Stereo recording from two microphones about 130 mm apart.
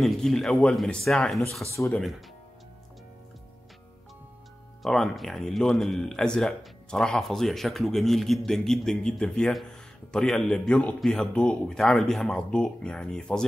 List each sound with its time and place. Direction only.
0.0 s speech: 5° left (ahead or behind)
1.7 s speech: 25° left (ahead or behind)
2.0 s speech: centre (ahead or behind)
4.8 s speech: centre (ahead or behind)